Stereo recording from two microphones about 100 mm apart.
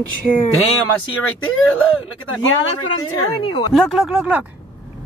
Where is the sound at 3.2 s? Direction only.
55° left (ahead or behind).